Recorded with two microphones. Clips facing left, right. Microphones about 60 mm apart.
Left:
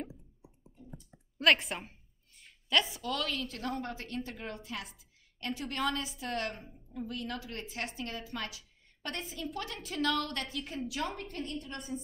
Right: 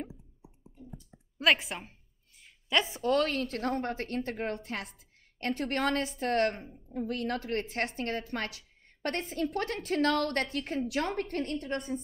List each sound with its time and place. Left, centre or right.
1.4 s a sound: centre
2.7 s a woman's voice: right
3.0 s a woman's voice: right